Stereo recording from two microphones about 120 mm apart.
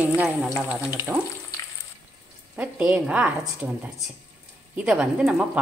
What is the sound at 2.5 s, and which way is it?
A woman's voice, 10° right (ahead or behind).